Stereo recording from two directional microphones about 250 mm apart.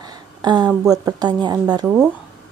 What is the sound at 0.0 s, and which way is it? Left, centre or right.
Speech, centre.